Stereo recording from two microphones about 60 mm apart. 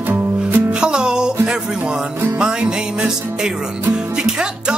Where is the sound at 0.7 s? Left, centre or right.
Centre.